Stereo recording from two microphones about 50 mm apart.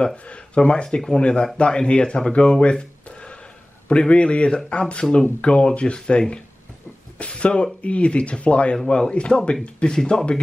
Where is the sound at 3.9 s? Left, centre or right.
Left.